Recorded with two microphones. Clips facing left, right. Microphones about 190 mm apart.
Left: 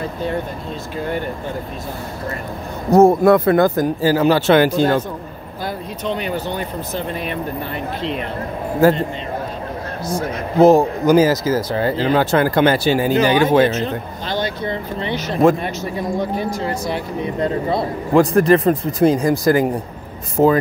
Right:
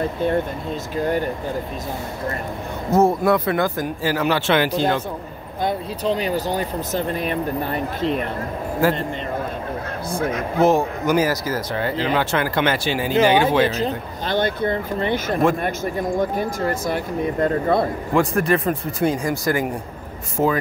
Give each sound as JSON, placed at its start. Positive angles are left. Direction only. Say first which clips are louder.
{"t": 3.0, "sound": "speech", "louder": "left 6 dB", "side_deg": 50}
{"t": 6.0, "sound": "speech", "louder": "right 1 dB", "side_deg": -35}
{"t": 8.8, "sound": "speech", "louder": "left 6 dB", "side_deg": 40}
{"t": 10.3, "sound": "speech", "louder": "left 6 dB", "side_deg": 35}
{"t": 13.7, "sound": "a man's voice", "louder": "left 2 dB", "side_deg": -35}
{"t": 14.2, "sound": "speech", "louder": "right 3 dB", "side_deg": -50}
{"t": 18.1, "sound": "speech", "louder": "left 7 dB", "side_deg": 35}